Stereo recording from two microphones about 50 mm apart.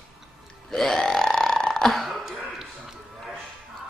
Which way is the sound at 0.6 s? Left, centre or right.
Centre.